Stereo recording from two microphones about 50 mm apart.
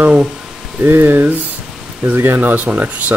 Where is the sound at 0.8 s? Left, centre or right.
Right.